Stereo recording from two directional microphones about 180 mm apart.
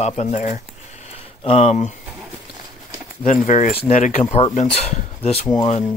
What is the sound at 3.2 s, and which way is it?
Speech, 45° left (ahead or behind).